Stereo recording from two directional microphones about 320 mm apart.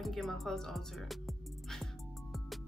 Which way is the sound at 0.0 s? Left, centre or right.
Centre.